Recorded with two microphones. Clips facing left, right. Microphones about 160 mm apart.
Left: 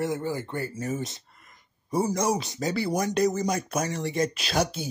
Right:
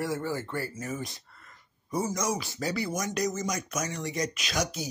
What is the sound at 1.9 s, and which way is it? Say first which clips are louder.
Speech: left 5 dB; 30° left (ahead or behind).